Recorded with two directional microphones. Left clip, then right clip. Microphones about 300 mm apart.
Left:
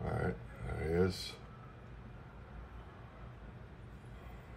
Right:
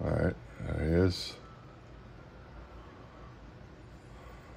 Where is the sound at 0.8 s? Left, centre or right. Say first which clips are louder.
Right 4 dB; right.